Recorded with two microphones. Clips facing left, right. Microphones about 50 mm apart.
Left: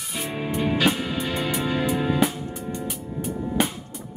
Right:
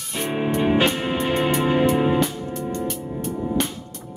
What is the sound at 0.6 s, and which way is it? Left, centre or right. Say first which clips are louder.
Music: right 2 dB; right.